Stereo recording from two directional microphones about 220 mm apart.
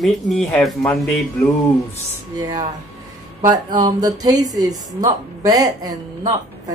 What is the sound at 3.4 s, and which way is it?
Speech, 20° right (ahead or behind).